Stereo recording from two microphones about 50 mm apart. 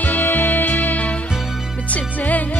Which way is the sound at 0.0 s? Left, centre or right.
Left.